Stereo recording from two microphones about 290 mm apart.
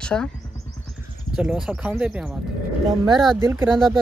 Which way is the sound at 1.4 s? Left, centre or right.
Centre.